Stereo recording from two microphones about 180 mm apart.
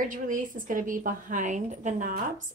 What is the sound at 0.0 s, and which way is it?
A woman's voice, 45° right (ahead or behind).